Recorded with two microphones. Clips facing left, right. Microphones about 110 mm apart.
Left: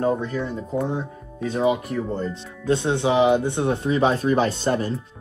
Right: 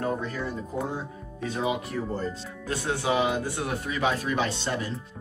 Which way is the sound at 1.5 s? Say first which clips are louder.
Left 7 dB; 35° left (ahead or behind).